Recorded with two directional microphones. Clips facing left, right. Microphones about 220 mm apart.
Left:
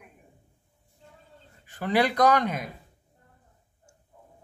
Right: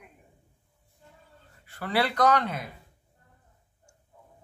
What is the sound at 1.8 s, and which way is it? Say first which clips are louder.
Speech: left 3 dB; 15° left (ahead or behind).